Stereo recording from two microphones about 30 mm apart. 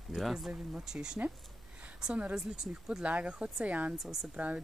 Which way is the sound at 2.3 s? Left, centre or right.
Right.